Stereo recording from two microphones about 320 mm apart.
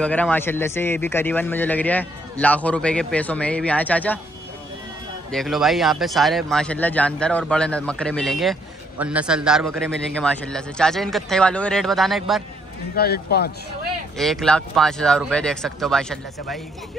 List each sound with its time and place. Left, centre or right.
0.0 s a man's voice: centre
5.3 s a man's voice: centre
12.9 s speech: left
14.1 s a man's voice: centre